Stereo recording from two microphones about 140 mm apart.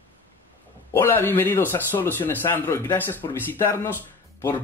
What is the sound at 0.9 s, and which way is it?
Speech, 15° left (ahead or behind).